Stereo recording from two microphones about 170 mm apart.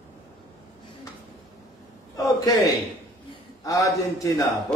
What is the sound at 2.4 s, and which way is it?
A man's voice, 20° left (ahead or behind).